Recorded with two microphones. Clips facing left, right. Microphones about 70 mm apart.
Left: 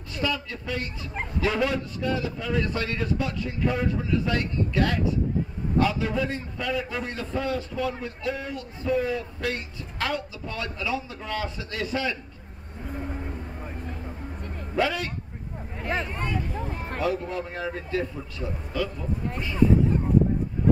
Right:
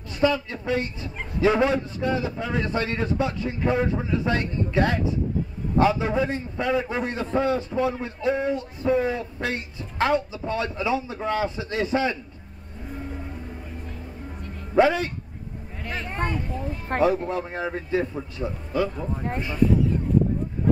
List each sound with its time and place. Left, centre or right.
0.2 s a man's voice: right
14.8 s a man's voice: right
16.1 s speech: right
16.5 s speech: left
17.3 s a man's voice: right